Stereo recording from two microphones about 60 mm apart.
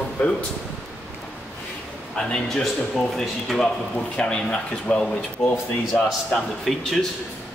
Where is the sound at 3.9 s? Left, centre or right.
Centre.